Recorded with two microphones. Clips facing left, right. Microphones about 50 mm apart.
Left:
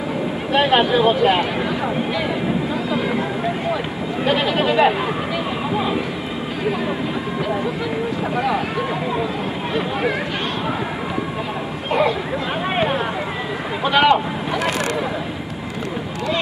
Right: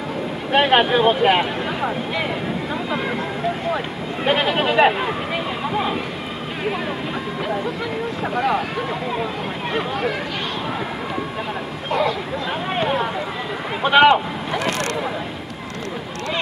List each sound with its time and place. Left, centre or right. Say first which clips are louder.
0.6 s speech: even; centre
3.7 s speech: left 2 dB; centre
5.7 s speech: left 1 dB; centre
8.4 s speech: right 1 dB; centre
11.9 s speech: left 2 dB; centre
12.7 s a sound: left 1 dB; centre
13.8 s speech: right 2 dB; centre
14.1 s speech: left 1 dB; centre